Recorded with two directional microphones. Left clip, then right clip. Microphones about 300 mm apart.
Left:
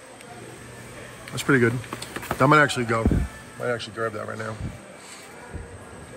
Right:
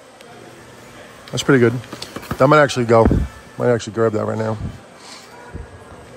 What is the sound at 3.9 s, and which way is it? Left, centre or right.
Speech, right.